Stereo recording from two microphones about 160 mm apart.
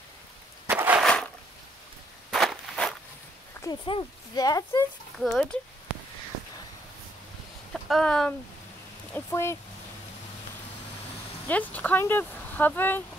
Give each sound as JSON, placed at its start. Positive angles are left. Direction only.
{"t": 0.7, "sound": "a sound", "side_deg": -10}
{"t": 1.0, "sound": "a sound", "side_deg": 5}
{"t": 2.3, "sound": "walk", "side_deg": 0}
{"t": 3.6, "sound": "speech", "side_deg": 25}
{"t": 5.2, "sound": "speech", "side_deg": 0}
{"t": 7.7, "sound": "speech", "side_deg": 0}
{"t": 9.1, "sound": "speech", "side_deg": 15}
{"t": 11.4, "sound": "speech", "side_deg": 10}